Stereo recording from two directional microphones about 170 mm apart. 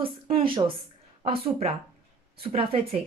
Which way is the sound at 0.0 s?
30° right (ahead or behind).